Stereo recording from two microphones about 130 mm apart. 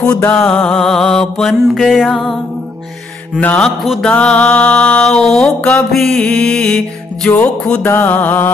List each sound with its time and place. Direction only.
0.2 s mantra: 20° left (ahead or behind)
0.5 s music: 5° left (ahead or behind)
3.3 s mantra: 10° left (ahead or behind)